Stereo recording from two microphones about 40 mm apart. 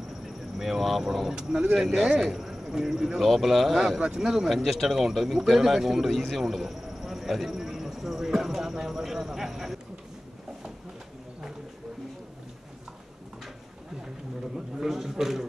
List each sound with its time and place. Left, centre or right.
0.6 s speech: centre
1.3 s a man's voice: centre
4.0 s a man's voice: centre
4.5 s a man's voice: centre
14.8 s a man's voice: centre